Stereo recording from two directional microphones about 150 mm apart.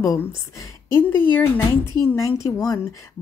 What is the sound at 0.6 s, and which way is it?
Speech, 15° left (ahead or behind).